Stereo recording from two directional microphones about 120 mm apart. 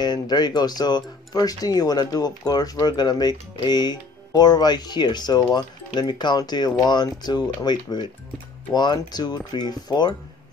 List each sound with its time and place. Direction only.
0.0 s speech: 35° left (ahead or behind)